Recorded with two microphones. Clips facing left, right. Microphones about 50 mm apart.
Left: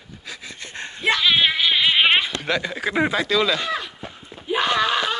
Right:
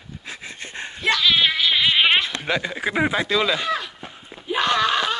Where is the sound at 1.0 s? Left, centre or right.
Centre.